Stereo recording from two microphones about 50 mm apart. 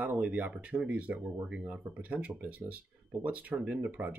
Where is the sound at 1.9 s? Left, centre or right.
Right.